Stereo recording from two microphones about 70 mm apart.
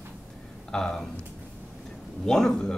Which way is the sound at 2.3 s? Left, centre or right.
Centre.